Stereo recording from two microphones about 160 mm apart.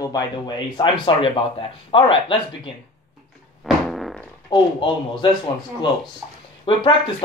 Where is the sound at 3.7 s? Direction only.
Centre (ahead or behind).